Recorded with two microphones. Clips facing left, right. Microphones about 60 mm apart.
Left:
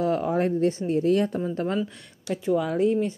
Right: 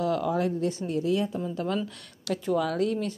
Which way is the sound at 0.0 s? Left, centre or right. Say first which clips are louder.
Left 3 dB; left.